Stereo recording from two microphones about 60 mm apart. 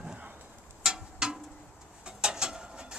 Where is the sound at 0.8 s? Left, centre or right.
Centre.